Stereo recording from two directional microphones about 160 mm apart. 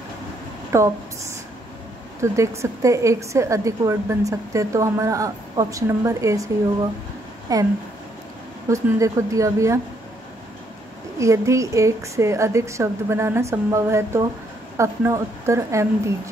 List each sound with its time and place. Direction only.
0.7 s a woman's voice: 20° right (ahead or behind)
2.3 s a woman's voice: 20° right (ahead or behind)
11.1 s a woman's voice: 20° right (ahead or behind)